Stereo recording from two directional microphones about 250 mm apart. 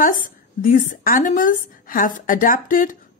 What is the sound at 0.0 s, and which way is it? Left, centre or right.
A woman's voice, left.